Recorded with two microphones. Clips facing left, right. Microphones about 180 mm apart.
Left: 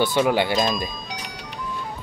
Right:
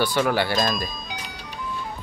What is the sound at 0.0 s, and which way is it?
Speech, 20° left (ahead or behind).